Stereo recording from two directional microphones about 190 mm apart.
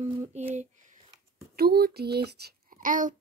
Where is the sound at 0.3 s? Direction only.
35° right (ahead or behind).